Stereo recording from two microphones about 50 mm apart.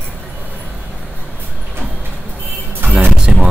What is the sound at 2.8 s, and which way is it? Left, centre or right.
Music, right.